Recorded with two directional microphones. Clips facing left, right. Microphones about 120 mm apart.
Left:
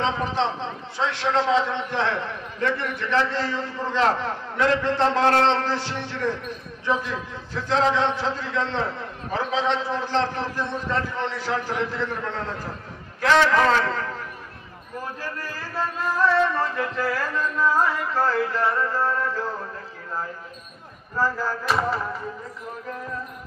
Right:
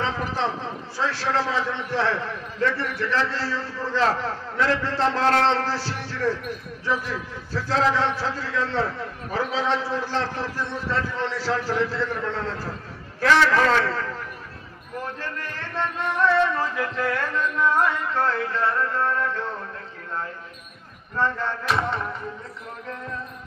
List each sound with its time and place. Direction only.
0.0 s a man's voice: 20° left (ahead or behind)
15.1 s speech: 10° left (ahead or behind)
16.2 s music: centre (ahead or behind)
21.2 s music: 5° left (ahead or behind)